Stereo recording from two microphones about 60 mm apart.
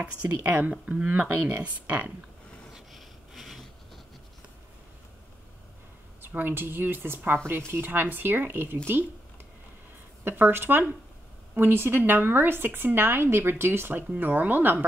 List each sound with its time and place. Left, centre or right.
0.0 s speech: right
2.7 s a sound: centre
6.2 s speech: right
10.2 s speech: right